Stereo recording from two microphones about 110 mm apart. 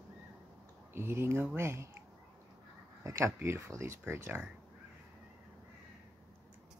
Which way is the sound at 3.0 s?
25° right (ahead or behind).